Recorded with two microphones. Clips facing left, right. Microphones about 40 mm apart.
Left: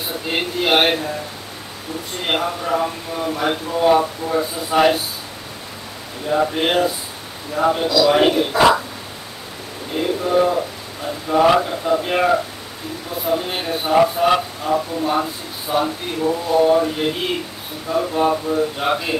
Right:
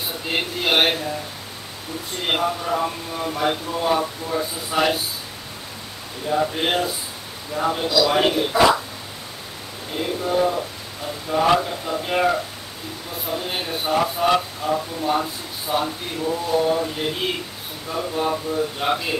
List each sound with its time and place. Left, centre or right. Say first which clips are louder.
0.3 s speech: left 3 dB; centre
2.2 s speech: left 1 dB; centre
6.2 s speech: left 3 dB; centre
6.6 s speech: left 4 dB; centre
9.9 s speech: left 4 dB; centre